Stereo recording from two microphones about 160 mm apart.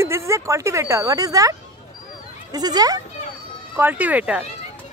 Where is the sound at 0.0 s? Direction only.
15° right (ahead or behind).